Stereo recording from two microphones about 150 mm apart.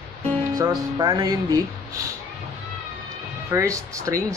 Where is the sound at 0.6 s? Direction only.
25° right (ahead or behind).